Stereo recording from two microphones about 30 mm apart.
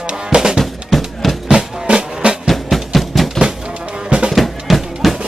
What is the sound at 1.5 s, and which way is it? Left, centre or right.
Music, right.